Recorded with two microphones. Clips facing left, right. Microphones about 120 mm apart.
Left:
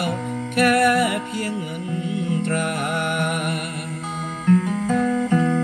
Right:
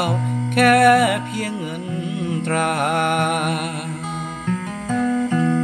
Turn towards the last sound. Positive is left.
turn(degrees=0)  # may be behind; listen again after turning